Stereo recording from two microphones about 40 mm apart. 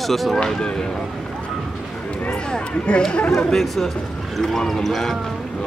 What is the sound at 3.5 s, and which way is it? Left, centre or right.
Speech, centre.